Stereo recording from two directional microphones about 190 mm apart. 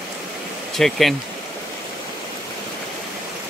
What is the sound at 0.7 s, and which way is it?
Speech, centre (ahead or behind).